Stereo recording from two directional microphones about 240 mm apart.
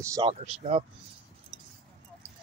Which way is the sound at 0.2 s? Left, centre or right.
Right.